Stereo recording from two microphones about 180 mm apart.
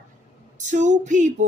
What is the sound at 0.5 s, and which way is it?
Female singing, 40° right (ahead or behind).